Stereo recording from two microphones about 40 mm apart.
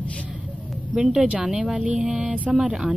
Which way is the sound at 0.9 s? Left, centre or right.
Centre.